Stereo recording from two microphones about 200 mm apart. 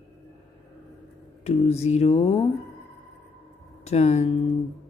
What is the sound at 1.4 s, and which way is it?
Speech, 30° left (ahead or behind).